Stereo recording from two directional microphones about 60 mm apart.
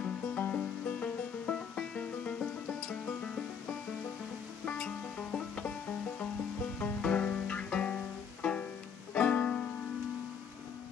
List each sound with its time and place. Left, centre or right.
0.4 s music: left
4.6 s music: centre
7.0 s music: centre